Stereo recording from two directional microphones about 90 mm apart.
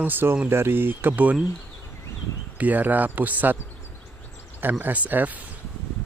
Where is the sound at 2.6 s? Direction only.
20° right (ahead or behind).